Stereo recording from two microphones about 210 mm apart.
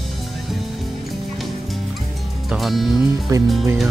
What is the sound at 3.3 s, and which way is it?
Speech, 15° right (ahead or behind).